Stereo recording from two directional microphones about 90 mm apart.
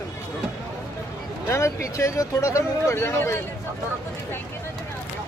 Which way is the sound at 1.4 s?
30° left (ahead or behind).